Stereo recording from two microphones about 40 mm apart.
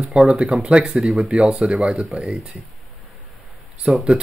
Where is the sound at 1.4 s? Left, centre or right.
Right.